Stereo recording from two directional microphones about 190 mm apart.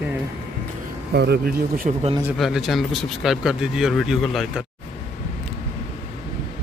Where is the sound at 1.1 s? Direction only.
60° right (ahead or behind).